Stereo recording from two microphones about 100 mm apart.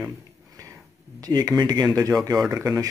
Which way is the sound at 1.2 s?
40° right (ahead or behind).